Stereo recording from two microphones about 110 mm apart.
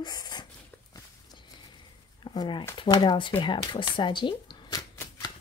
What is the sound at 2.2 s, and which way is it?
Speech, 45° left (ahead or behind).